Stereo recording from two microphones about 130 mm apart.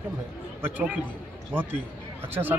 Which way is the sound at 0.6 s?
15° right (ahead or behind).